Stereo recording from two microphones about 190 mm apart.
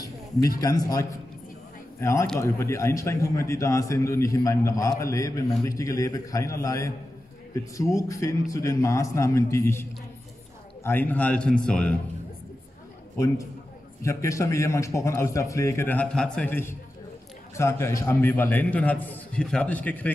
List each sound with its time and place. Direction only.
0.6 s a man's voice: 20° left (ahead or behind)
14.0 s a man's voice: 15° left (ahead or behind)